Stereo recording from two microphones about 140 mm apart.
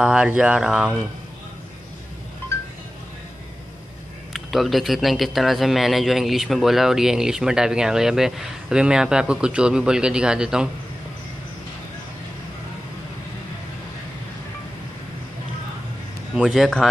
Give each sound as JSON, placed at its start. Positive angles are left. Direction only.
{"t": 0.0, "sound": "speech", "side_deg": -5}
{"t": 4.3, "sound": "speech", "side_deg": 0}
{"t": 16.3, "sound": "speech", "side_deg": 0}